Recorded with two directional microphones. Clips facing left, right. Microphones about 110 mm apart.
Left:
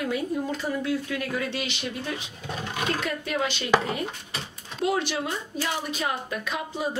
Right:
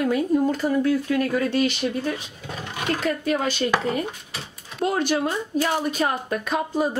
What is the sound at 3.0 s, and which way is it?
Speech, 40° right (ahead or behind).